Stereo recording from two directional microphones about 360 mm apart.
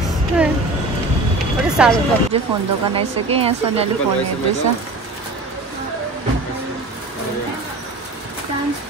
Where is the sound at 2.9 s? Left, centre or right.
Centre.